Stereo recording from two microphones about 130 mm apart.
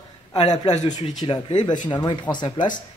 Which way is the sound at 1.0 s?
35° left (ahead or behind).